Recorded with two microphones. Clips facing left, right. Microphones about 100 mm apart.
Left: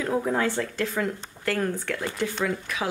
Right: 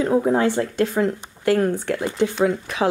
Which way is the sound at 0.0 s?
25° right (ahead or behind).